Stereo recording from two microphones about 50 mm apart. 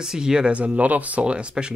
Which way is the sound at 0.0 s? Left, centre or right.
Centre.